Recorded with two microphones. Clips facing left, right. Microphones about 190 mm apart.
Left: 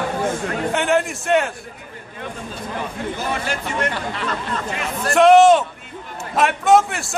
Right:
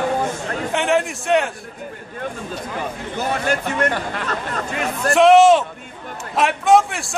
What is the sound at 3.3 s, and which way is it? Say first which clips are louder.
Speech: right 3 dB; 55° right (ahead or behind).